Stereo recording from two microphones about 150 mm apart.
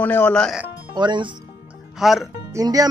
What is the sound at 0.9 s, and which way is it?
Speech, 30° right (ahead or behind).